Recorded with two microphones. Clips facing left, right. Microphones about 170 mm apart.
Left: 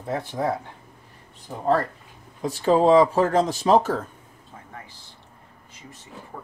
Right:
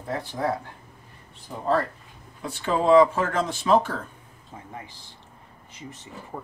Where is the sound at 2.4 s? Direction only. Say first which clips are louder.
Left 5 dB; 35° left (ahead or behind).